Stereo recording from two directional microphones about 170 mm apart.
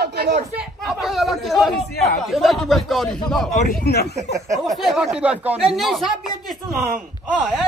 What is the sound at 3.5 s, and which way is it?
Speech, 60° left (ahead or behind).